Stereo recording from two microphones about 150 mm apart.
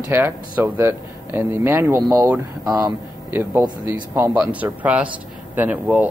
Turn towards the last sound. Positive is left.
turn(degrees=-10)  # may be behind; listen again after turning